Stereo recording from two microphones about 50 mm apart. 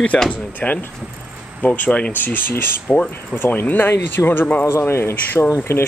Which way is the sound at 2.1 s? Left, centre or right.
Left.